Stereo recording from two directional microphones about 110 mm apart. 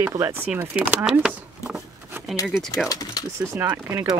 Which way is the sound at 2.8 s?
35° left (ahead or behind).